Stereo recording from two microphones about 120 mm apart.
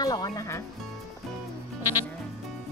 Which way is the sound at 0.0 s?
30° left (ahead or behind).